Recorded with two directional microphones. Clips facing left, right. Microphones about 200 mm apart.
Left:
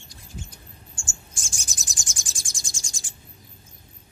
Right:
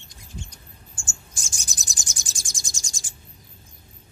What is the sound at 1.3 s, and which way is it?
Bird, 35° right (ahead or behind).